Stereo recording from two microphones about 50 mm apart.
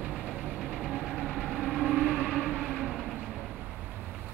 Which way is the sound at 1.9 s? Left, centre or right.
Right.